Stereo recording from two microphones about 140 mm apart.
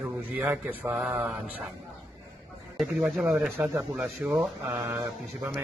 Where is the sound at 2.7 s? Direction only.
5° right (ahead or behind).